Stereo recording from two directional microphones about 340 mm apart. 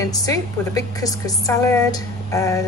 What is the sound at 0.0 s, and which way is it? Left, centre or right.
A woman's voice, centre.